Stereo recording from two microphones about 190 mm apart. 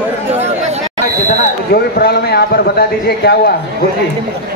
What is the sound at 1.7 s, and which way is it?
A man's voice, 55° left (ahead or behind).